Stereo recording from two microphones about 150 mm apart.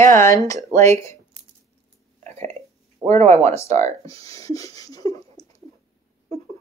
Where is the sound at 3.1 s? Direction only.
50° right (ahead or behind).